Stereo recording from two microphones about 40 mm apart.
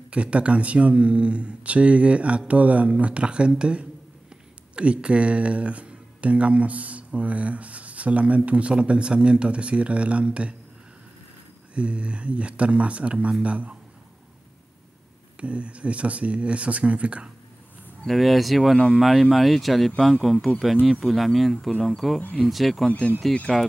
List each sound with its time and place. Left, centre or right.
0.1 s speech: right
11.7 s speech: right
15.3 s speech: right
18.0 s speech: centre
22.8 s speech: left